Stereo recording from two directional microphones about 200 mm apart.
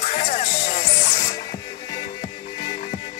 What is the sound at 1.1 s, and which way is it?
Music, 20° left (ahead or behind).